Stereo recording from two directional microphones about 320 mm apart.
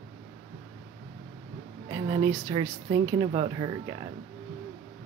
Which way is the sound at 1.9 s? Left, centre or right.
Centre.